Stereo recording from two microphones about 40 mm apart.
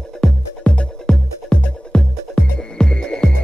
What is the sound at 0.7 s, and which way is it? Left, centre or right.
Music, left.